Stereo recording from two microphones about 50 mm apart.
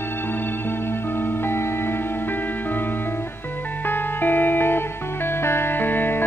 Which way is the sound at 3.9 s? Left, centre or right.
Left.